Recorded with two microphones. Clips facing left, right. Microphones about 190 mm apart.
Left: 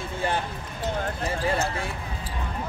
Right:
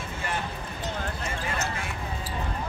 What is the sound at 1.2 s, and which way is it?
Speech, 35° left (ahead or behind).